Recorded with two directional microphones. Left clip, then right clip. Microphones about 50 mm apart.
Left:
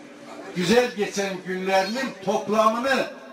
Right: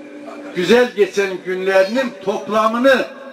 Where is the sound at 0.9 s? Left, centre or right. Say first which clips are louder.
Right 10 dB; centre.